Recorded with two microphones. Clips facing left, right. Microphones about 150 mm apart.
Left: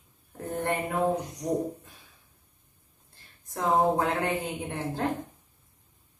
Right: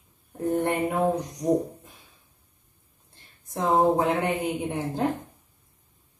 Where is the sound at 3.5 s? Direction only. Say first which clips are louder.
Right 3 dB; 25° right (ahead or behind).